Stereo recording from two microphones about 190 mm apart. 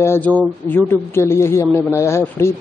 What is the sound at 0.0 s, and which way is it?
Speech, 10° left (ahead or behind).